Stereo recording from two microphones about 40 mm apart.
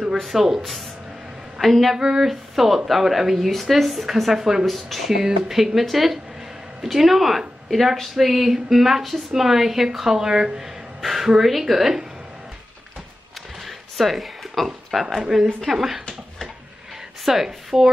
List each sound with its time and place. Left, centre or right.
0.2 s a woman's voice: centre
2.0 s a woman's voice: centre
2.5 s speech: centre
4.6 s a woman's voice: centre
13.7 s a woman's voice: centre
17.2 s a woman's voice: centre